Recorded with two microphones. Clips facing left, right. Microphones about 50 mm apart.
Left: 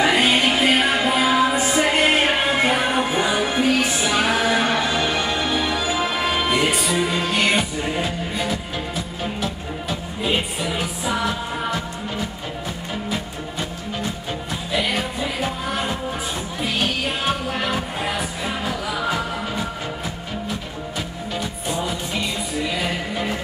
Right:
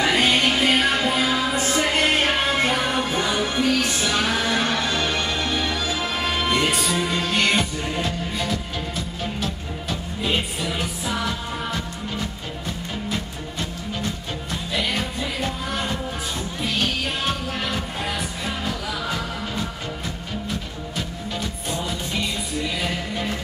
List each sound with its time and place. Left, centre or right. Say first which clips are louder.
0.0 s music: left 2 dB; centre
21.4 s music: left 3 dB; centre